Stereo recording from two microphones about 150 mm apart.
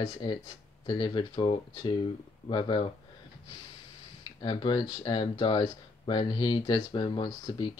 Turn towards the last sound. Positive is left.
turn(degrees=30)  # may be behind; listen again after turning